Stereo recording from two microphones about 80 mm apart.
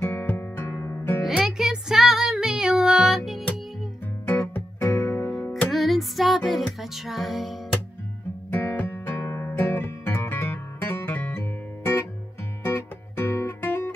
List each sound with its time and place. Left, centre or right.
0.0 s music: left
1.2 s music: centre
4.3 s music: left
5.7 s music: centre
8.5 s music: left
9.5 s guitar: left
12.6 s music: left